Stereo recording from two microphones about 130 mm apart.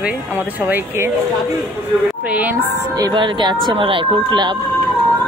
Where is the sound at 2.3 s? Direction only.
10° right (ahead or behind).